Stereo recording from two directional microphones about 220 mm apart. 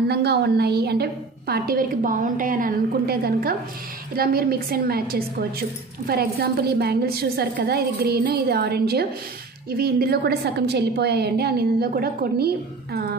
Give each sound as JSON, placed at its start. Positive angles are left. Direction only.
{"t": 0.1, "sound": "a woman's voice", "side_deg": -45}